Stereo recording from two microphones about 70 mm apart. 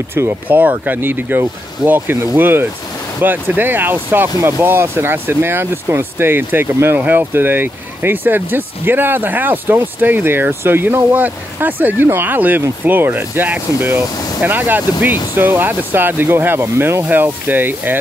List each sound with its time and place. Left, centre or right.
0.2 s speech: right
0.5 s speech: right